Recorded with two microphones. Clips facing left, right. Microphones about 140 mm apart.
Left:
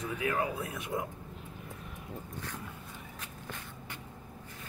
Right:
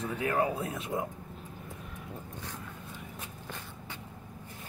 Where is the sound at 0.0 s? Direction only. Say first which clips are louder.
Right 3 dB; 35° right (ahead or behind).